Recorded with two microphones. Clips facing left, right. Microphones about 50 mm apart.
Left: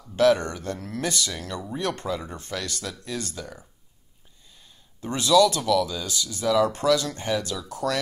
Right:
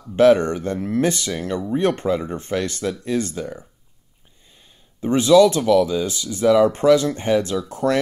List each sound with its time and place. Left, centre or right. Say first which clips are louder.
0.0 s speech: right 6 dB; right